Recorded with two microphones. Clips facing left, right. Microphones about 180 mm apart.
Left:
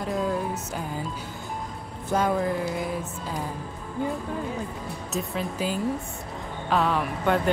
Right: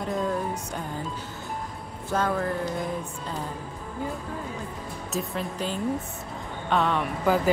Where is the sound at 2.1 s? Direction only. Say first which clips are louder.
Left 2 dB; 15° left (ahead or behind).